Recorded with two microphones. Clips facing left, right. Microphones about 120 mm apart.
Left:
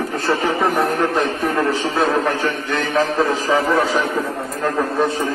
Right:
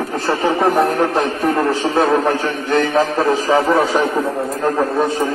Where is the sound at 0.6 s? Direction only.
35° right (ahead or behind).